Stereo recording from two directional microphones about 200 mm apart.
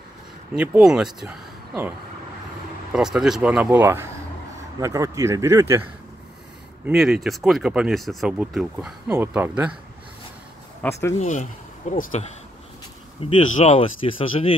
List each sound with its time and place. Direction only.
0.6 s speech: 5° right (ahead or behind)
6.9 s speech: centre (ahead or behind)
10.8 s speech: 15° left (ahead or behind)
11.1 s speech: 40° left (ahead or behind)